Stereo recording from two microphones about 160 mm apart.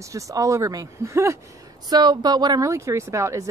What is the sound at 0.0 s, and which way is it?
Speech, 20° right (ahead or behind).